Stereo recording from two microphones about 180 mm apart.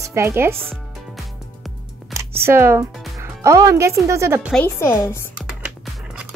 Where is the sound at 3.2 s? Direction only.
15° right (ahead or behind).